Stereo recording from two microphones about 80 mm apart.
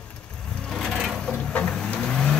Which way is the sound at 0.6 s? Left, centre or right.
Centre.